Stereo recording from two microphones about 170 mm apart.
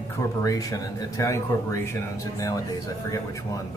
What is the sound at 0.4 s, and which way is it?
Speech, 20° left (ahead or behind).